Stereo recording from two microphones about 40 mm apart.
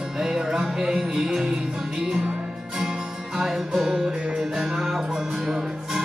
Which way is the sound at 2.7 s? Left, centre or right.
Centre.